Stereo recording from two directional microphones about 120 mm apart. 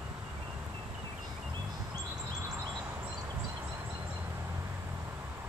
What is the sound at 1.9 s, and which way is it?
Chirp, 30° right (ahead or behind).